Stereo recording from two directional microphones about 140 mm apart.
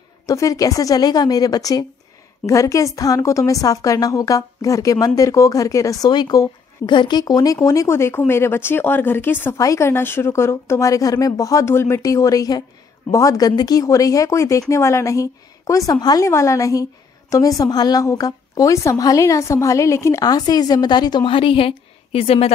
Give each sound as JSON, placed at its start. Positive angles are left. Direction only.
{"t": 0.3, "sound": "a woman's voice", "side_deg": 25}